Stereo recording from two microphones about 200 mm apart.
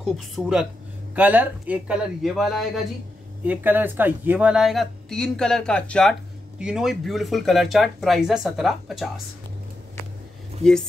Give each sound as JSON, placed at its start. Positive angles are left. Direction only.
{"t": 0.0, "sound": "speech", "side_deg": -5}